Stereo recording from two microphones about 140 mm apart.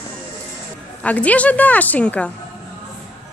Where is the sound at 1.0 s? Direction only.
10° left (ahead or behind).